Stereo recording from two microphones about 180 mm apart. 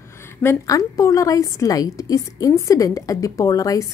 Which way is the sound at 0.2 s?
15° left (ahead or behind).